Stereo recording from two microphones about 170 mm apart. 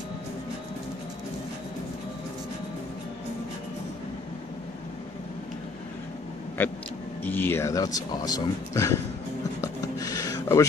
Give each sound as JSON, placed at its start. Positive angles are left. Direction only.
{"t": 7.2, "sound": "speech", "side_deg": 10}
{"t": 9.6, "sound": "rub", "side_deg": 20}